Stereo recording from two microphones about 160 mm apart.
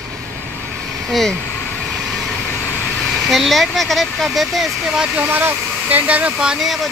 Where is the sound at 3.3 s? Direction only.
Centre (ahead or behind).